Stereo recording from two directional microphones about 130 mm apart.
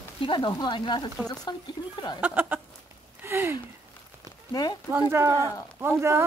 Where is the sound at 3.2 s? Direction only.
20° right (ahead or behind).